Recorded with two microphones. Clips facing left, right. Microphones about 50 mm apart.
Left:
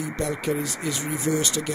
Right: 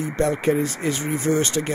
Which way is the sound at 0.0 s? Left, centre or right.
Right.